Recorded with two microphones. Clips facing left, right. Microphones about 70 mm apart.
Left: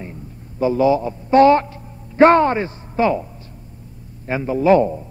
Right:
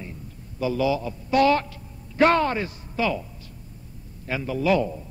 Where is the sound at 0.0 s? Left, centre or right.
Left.